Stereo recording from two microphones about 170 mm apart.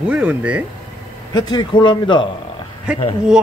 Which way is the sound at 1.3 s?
25° left (ahead or behind).